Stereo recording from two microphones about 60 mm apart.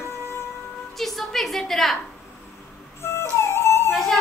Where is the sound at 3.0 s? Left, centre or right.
Left.